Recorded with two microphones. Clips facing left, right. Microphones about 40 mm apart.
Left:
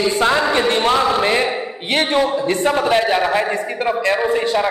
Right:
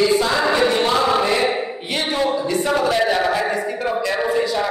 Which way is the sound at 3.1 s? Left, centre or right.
Left.